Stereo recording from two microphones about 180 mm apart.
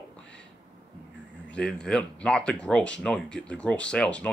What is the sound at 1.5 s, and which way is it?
Speech, 5° left (ahead or behind).